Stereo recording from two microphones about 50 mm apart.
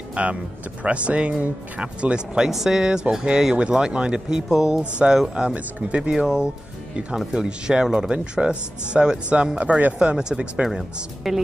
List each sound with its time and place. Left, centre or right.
0.1 s speech: right
2.5 s speech: centre
5.6 s speech: right
6.1 s speech: centre
7.4 s speech: centre
9.6 s speech: right
9.9 s speech: centre
11.3 s a woman's voice: centre